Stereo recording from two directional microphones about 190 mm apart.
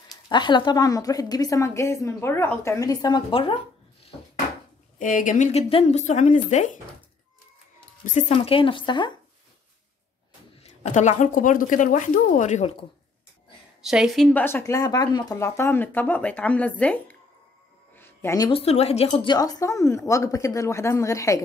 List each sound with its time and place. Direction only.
0.1 s a woman's voice: 25° left (ahead or behind)
4.9 s speech: 45° left (ahead or behind)
8.0 s speech: 40° left (ahead or behind)
8.3 s a woman's voice: 30° left (ahead or behind)
10.6 s speech: 35° left (ahead or behind)
13.8 s speech: centre (ahead or behind)
17.9 s a sound: 10° left (ahead or behind)
18.5 s speech: 30° left (ahead or behind)
19.0 s speech: 20° left (ahead or behind)